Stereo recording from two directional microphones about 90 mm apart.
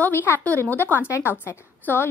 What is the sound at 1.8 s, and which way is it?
Speech, 25° left (ahead or behind).